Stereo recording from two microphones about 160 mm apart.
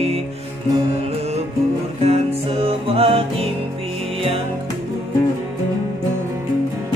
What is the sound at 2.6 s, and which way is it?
Music, 35° right (ahead or behind).